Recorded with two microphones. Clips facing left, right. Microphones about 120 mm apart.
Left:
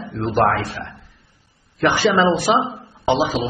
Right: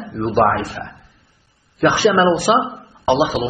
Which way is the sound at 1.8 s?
20° right (ahead or behind).